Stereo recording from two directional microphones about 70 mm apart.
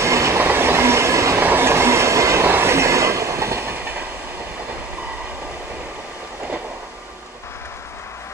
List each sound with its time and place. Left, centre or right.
0.0 s train: right
0.4 s train: right
1.4 s train: right
2.4 s train: right